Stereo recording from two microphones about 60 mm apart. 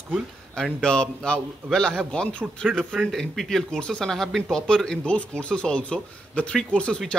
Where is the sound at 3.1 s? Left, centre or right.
Centre.